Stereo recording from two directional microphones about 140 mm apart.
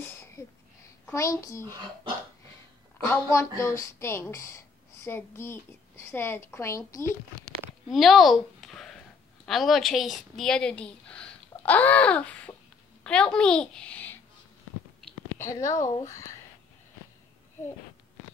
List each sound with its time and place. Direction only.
1.1 s speech: 25° left (ahead or behind)
3.1 s speech: 20° left (ahead or behind)
7.9 s a woman's voice: centre (ahead or behind)
15.3 s speech: 20° left (ahead or behind)